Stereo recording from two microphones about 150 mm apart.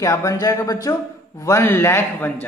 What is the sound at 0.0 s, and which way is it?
Speech, 20° left (ahead or behind).